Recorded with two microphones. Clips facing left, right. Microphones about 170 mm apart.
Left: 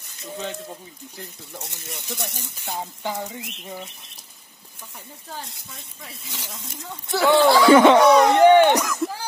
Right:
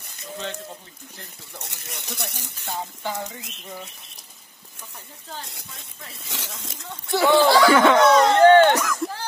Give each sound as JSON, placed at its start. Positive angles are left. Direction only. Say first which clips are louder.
{"t": 1.9, "sound": "speech", "louder": "left 2 dB", "side_deg": -75}
{"t": 2.6, "sound": "speech", "louder": "left 1 dB", "side_deg": 15}
{"t": 6.3, "sound": "speech", "louder": "right 2 dB", "side_deg": -90}
{"t": 7.1, "sound": "speech", "louder": "left 1 dB", "side_deg": 0}
{"t": 7.6, "sound": "speech", "louder": "left 3 dB", "side_deg": 20}